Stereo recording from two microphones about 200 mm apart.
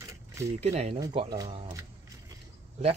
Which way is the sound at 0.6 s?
30° right (ahead or behind).